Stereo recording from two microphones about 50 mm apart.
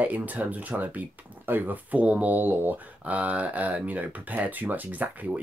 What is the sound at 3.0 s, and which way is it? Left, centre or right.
Speech, right.